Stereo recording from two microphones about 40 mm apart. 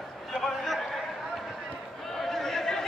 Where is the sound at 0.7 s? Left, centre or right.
Centre.